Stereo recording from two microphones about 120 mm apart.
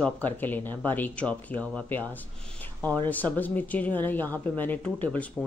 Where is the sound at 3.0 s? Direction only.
15° left (ahead or behind).